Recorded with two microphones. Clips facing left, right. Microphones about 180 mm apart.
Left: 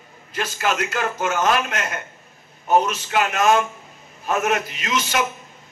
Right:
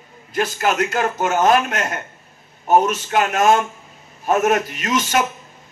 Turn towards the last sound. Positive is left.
turn(degrees=-45)  # may be behind; listen again after turning